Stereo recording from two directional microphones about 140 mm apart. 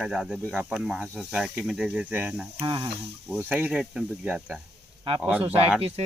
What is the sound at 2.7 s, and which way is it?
Speech, 35° right (ahead or behind).